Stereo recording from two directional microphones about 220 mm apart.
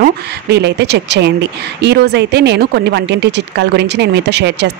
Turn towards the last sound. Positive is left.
turn(degrees=-50)  # may be behind; listen again after turning